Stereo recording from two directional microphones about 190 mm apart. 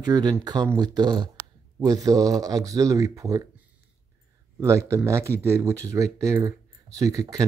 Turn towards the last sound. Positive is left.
turn(degrees=-20)  # may be behind; listen again after turning